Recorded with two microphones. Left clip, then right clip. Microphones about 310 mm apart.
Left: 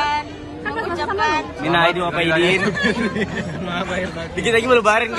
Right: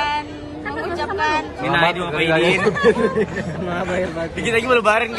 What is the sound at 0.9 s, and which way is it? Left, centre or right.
Chatter, centre.